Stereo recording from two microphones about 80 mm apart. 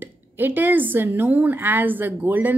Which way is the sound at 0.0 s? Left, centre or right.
Right.